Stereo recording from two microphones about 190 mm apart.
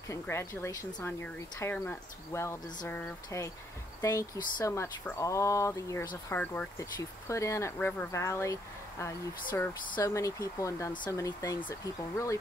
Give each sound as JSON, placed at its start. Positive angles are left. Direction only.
{"t": 0.1, "sound": "speech", "side_deg": 15}